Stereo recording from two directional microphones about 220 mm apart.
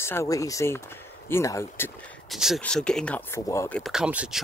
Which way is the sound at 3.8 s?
5° right (ahead or behind).